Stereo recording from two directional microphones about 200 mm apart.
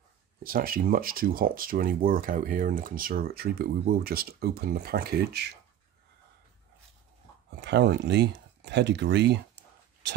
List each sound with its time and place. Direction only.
0.4 s speech: 45° right (ahead or behind)
7.6 s speech: 55° right (ahead or behind)